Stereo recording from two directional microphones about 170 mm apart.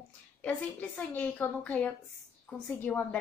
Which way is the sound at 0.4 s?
5° left (ahead or behind).